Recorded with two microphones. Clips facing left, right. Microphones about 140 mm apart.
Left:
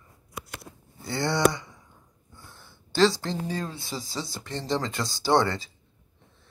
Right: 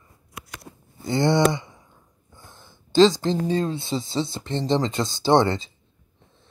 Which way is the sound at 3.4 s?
25° right (ahead or behind).